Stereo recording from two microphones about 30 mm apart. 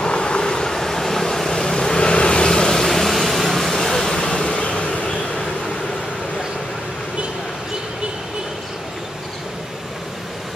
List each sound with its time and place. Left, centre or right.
0.0 s vehicle: left
0.7 s vehicle: centre
1.8 s vehicle: left
2.7 s vehicle: centre
4.2 s vehicle: left